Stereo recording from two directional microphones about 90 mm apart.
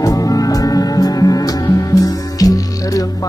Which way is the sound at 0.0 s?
40° left (ahead or behind).